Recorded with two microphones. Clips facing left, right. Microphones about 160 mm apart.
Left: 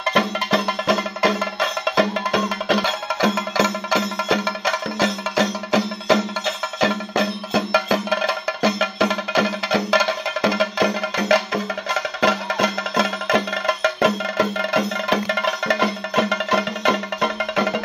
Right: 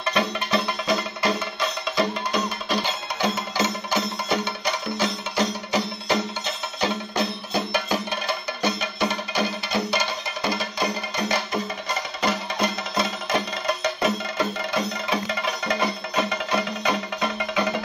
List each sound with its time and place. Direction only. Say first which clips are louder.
0.1 s music: left 3 dB; 90° left; by 17.8 s 55° left (ahead or behind)